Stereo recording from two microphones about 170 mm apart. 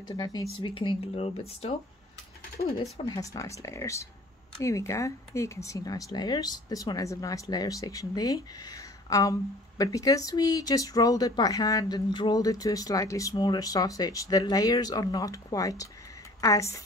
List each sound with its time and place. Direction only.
0.1 s speech: 20° left (ahead or behind)
2.8 s speech: 20° left (ahead or behind)